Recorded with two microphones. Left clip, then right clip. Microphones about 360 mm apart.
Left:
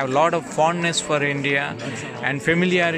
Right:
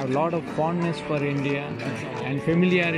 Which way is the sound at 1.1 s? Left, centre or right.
Left.